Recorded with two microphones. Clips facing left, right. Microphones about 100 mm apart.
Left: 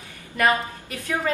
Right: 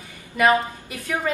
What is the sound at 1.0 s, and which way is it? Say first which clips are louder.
Speech: even; 10° right (ahead or behind).